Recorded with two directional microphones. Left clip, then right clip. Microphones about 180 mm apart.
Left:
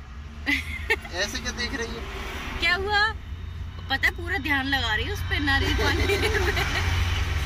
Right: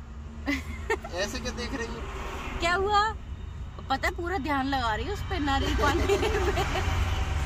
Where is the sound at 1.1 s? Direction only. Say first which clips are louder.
Left 3 dB; 10° right (ahead or behind).